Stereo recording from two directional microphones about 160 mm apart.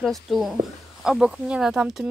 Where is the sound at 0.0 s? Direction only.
Centre (ahead or behind).